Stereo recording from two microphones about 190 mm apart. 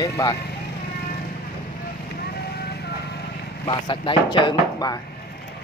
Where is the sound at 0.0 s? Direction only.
20° left (ahead or behind).